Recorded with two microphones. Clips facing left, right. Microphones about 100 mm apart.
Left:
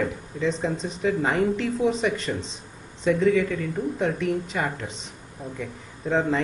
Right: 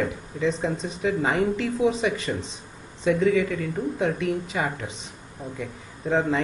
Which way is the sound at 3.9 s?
5° right (ahead or behind).